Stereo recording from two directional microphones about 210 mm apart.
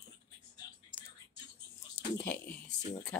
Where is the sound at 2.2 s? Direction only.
10° left (ahead or behind).